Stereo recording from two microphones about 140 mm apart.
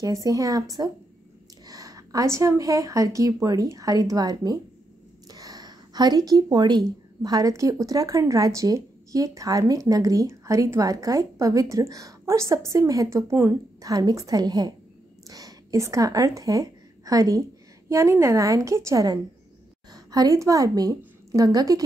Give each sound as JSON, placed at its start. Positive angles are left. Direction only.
{"t": 0.0, "sound": "a woman's voice", "side_deg": -25}
{"t": 1.7, "sound": "a woman's voice", "side_deg": -25}